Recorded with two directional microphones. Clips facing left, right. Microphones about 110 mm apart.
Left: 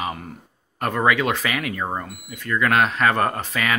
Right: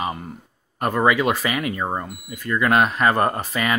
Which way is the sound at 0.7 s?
5° right (ahead or behind).